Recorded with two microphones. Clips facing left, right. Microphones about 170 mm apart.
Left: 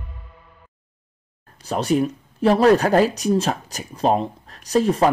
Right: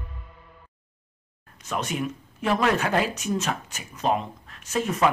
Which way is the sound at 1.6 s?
35° left (ahead or behind).